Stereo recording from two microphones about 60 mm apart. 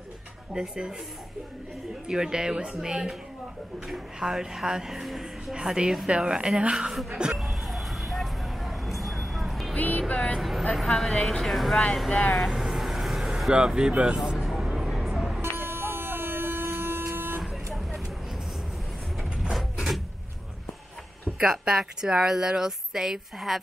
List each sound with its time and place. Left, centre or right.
0.5 s a woman's voice: centre
2.0 s a woman's voice: centre
6.0 s a sound: centre
9.8 s speech: left
10.7 s speech: centre
12.4 s vehicle: centre
13.5 s a sound: centre
15.5 s printer: right
17.1 s vehicle: right
19.5 s a sound: centre
21.4 s a woman's voice: centre